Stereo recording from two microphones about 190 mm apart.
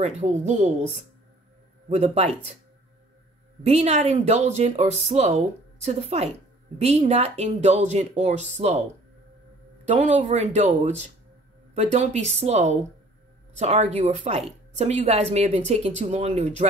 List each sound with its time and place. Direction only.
0.0 s speech: 40° right (ahead or behind)
3.6 s speech: 35° right (ahead or behind)
9.9 s speech: 35° right (ahead or behind)